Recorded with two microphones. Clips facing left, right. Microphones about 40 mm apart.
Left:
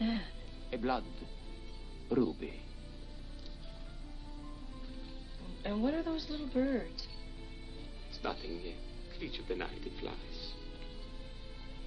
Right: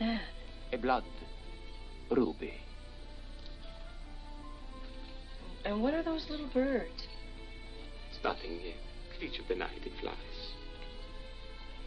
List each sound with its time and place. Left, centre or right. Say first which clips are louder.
0.0 s music: right 1 dB; centre
2.0 s a woman's voice: right 2 dB; centre
5.6 s a woman's voice: right 2 dB; centre
8.2 s a woman's voice: right 3 dB; centre